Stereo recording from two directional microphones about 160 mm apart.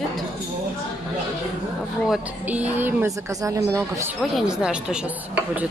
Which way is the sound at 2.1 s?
10° right (ahead or behind).